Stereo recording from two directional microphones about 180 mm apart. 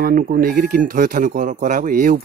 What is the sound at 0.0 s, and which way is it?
Speech, 50° right (ahead or behind).